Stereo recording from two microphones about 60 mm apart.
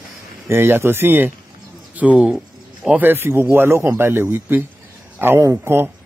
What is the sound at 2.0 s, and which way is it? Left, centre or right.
Speech, centre.